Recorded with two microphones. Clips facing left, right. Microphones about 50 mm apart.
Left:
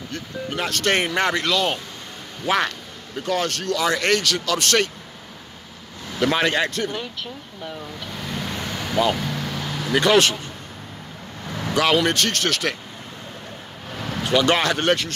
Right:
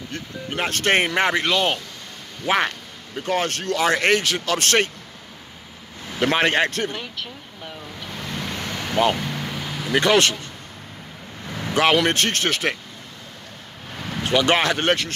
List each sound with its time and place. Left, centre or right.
0.1 s speech: right
6.1 s speech: right
8.1 s vehicle: centre
9.9 s speech: right
10.2 s speech: centre
11.4 s vehicle: centre
11.7 s speech: right
13.9 s a sound: centre
14.3 s speech: right